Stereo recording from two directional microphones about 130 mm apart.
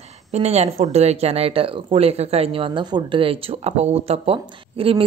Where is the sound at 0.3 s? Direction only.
55° right (ahead or behind).